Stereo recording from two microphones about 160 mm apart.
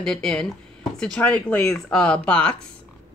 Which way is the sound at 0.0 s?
5° left (ahead or behind).